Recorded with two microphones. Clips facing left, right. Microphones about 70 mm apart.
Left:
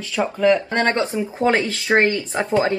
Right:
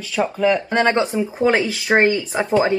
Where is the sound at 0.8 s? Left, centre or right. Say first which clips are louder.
Right 2 dB; centre.